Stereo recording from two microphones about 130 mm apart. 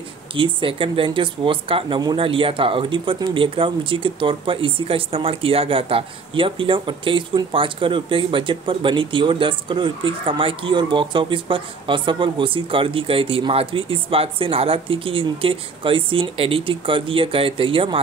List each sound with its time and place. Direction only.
0.4 s speech: 40° right (ahead or behind)